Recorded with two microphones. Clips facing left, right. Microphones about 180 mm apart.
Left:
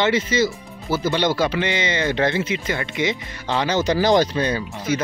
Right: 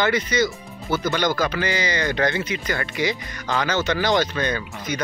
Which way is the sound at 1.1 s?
30° left (ahead or behind).